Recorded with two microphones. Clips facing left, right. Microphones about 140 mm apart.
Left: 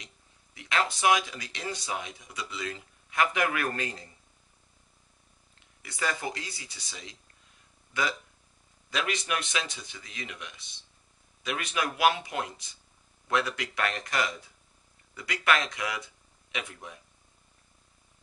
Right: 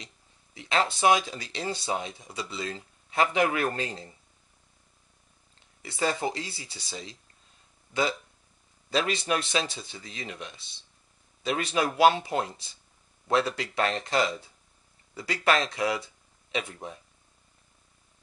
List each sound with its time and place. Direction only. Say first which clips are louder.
0.6 s speech: right 3 dB; 30° right (ahead or behind)
5.8 s speech: right 5 dB; 30° right (ahead or behind)